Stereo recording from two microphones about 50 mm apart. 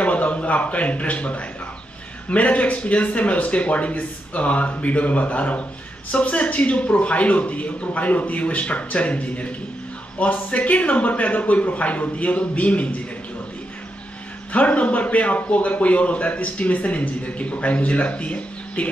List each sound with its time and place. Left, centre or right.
0.0 s a man's voice: left
14.5 s a man's voice: left